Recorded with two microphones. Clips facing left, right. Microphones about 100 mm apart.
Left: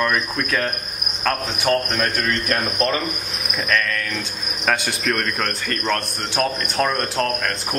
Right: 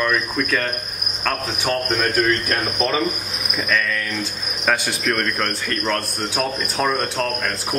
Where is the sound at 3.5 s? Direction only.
Centre (ahead or behind).